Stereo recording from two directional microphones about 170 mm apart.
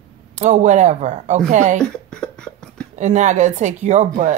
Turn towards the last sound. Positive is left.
turn(degrees=-45)  # may be behind; listen again after turning